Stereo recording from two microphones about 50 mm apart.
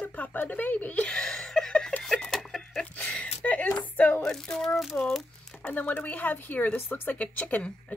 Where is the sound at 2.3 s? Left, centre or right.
Centre.